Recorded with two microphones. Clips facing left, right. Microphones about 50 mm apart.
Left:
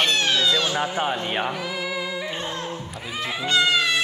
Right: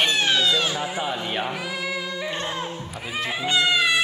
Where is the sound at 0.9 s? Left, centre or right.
Left.